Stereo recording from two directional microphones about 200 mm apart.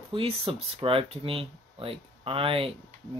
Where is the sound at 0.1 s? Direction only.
25° right (ahead or behind).